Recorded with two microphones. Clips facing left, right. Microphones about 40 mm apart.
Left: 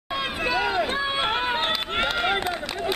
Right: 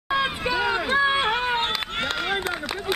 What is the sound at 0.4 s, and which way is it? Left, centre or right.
Run, centre.